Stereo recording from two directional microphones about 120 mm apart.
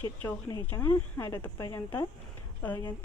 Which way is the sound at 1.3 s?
35° left (ahead or behind).